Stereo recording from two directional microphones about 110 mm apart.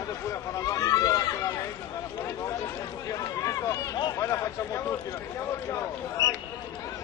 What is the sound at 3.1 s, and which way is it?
Speech, 30° left (ahead or behind).